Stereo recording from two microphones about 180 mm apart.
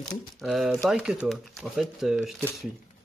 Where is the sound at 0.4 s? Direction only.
Centre (ahead or behind).